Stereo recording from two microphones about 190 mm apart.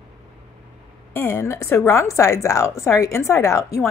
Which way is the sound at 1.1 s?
15° left (ahead or behind).